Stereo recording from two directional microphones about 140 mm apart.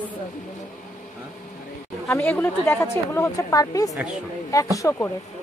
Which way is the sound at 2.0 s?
15° left (ahead or behind).